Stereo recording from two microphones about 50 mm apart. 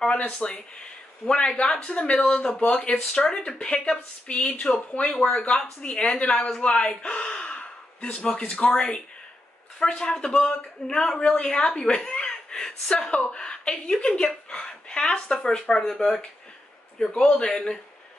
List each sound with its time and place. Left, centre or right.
0.3 s speech: centre